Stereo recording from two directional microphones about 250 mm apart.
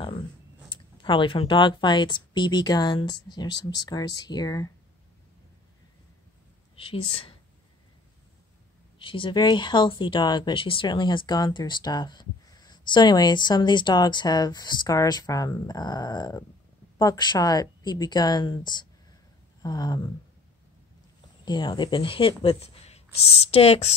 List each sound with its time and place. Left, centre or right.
1.0 s speech: left
6.8 s speech: left
8.9 s speech: left
21.5 s speech: centre